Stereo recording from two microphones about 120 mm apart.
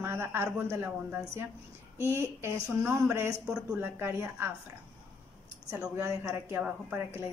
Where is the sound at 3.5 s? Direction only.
5° right (ahead or behind).